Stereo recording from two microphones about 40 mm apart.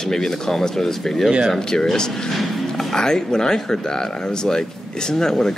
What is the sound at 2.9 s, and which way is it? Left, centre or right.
Speech, centre.